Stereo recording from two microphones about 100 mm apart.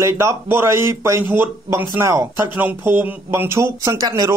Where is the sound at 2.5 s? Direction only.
20° right (ahead or behind); by 4.3 s 40° right (ahead or behind).